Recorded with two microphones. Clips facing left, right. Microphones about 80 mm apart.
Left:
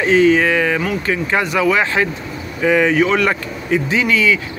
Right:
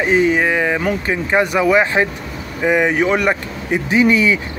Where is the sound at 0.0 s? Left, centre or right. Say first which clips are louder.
Left 2 dB; centre.